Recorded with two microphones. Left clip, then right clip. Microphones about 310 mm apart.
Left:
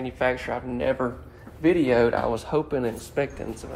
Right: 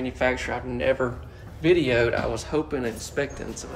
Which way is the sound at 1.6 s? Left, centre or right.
Left.